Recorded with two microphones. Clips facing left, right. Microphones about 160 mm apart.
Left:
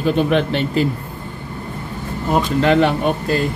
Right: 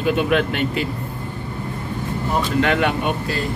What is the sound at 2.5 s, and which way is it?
Speech, 35° left (ahead or behind).